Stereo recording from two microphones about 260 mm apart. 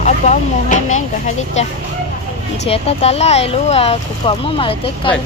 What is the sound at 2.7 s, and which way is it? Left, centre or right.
Speech, left.